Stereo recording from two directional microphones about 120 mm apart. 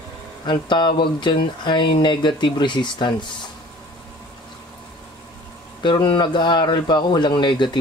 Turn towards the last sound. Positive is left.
turn(degrees=40)  # may be behind; listen again after turning